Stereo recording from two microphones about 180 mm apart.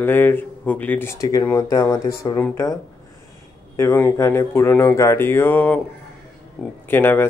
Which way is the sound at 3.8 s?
15° left (ahead or behind).